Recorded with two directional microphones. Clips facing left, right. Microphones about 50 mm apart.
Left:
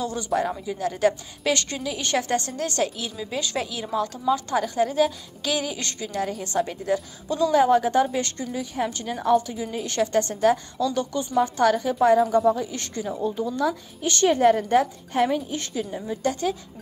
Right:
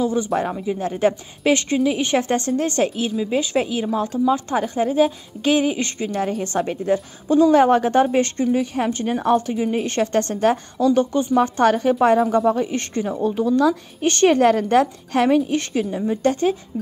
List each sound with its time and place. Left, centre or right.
0.0 s a woman's voice: centre
7.5 s a woman's voice: right
11.3 s a woman's voice: right
13.1 s a woman's voice: right
14.0 s a woman's voice: right
14.3 s a woman's voice: right